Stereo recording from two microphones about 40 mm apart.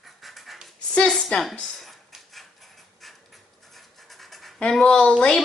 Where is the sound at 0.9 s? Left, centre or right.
Left.